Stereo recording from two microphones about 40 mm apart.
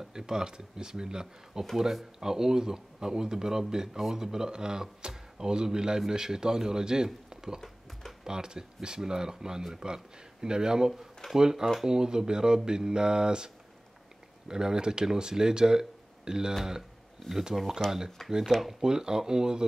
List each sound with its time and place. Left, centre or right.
0.1 s speech: centre
14.5 s speech: centre
17.3 s speech: centre
18.8 s speech: centre